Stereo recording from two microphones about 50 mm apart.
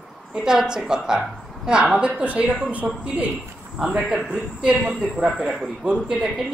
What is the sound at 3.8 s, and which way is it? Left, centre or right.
Speech, centre.